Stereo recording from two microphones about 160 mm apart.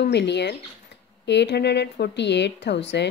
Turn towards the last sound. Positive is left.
turn(degrees=90)